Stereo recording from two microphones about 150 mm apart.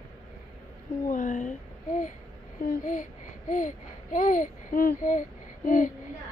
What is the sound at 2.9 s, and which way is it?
Babbling, 60° left (ahead or behind).